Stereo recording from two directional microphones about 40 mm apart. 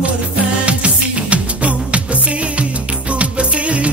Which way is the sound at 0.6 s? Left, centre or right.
Right.